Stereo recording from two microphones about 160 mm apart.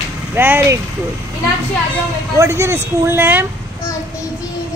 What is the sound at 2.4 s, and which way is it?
Speech, 15° right (ahead or behind).